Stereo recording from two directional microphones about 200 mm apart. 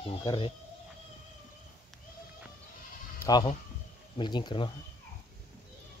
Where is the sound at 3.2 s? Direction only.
20° left (ahead or behind).